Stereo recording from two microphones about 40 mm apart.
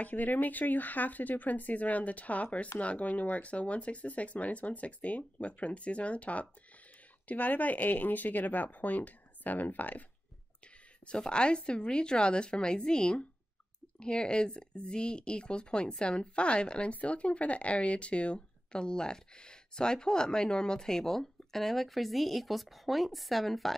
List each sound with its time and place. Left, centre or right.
0.0 s speech: left
11.1 s speech: left
16.9 s speech: left; by 23.7 s centre